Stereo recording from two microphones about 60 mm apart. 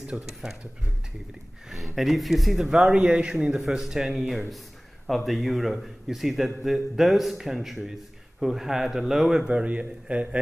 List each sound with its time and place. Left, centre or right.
0.0 s speech: centre
2.0 s a man's voice: centre
2.9 s a man's voice: centre
9.5 s a man's voice: right